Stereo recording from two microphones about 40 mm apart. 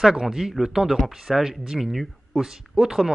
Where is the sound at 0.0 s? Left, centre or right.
Centre.